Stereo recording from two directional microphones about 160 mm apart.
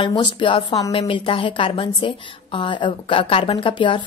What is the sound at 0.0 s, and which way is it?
A woman's voice, 30° left (ahead or behind).